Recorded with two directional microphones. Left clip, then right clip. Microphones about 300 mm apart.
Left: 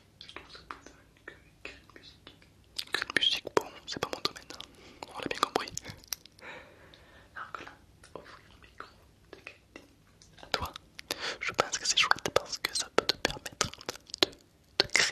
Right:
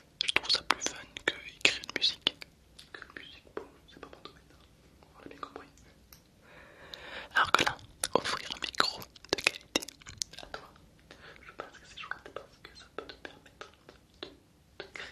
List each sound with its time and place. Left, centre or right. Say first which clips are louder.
0.2 s whispering: right 19 dB; right
2.8 s whispering: left 18 dB; left
7.1 s whispering: right 16 dB; right
9.3 s glass: right 19 dB; right
11.0 s whispering: left 17 dB; left